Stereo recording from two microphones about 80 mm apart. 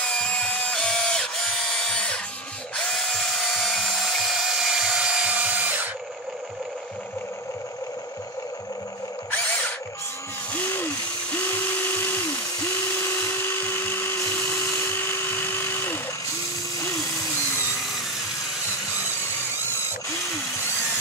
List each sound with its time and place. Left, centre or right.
0.0 s tools: centre; by 5.9 s right
10.5 s a sound: left
11.3 s electric toothbrush: left
13.0 s dental drill: left